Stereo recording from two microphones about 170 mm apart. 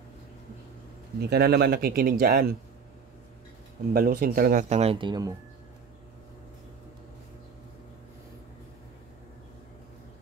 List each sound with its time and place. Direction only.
1.2 s speech: 70° right (ahead or behind)
3.9 s speech: 60° right (ahead or behind)
4.6 s speech: 40° right (ahead or behind)